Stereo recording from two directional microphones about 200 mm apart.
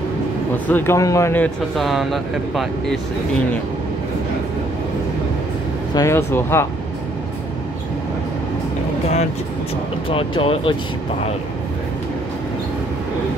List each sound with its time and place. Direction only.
0.7 s speech: 10° left (ahead or behind)
5.9 s speech: 15° left (ahead or behind)
10.0 s speech: 25° left (ahead or behind)